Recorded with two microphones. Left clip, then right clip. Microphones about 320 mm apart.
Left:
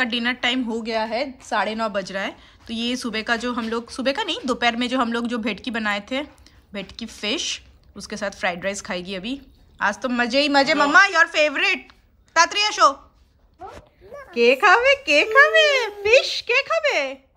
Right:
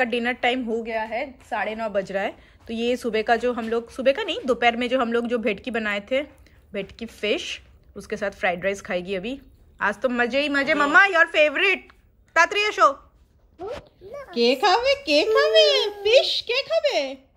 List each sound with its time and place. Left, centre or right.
0.0 s a woman's voice: centre
14.5 s a child's voice: centre